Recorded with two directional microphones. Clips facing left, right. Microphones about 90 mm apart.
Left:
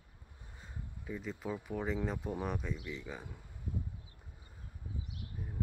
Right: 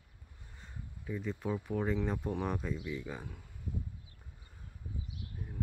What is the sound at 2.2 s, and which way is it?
Speech, 10° left (ahead or behind).